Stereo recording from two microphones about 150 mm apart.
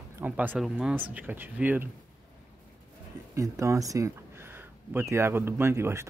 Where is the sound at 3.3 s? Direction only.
20° right (ahead or behind).